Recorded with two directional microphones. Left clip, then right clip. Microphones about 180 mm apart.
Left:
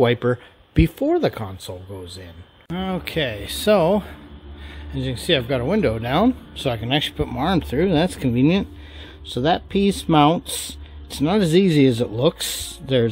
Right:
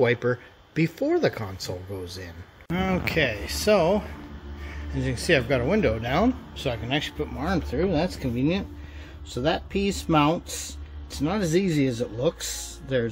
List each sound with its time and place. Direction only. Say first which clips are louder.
0.0 s speech: left 4 dB; 30° left (ahead or behind)
2.7 s speech: even; 10° left (ahead or behind)
3.3 s speech: left 4 dB; 35° left (ahead or behind)
4.9 s speech: left 2 dB; 20° left (ahead or behind); by 8.6 s 50° left (ahead or behind)
9.3 s speech: left 6 dB; 40° left (ahead or behind)